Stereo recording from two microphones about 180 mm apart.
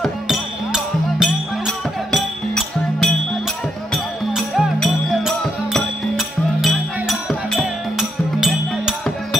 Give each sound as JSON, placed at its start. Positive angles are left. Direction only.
{"t": 0.0, "sound": "music", "side_deg": 0}